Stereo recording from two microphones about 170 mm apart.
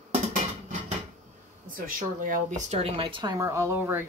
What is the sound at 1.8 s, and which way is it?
Speech, 55° right (ahead or behind).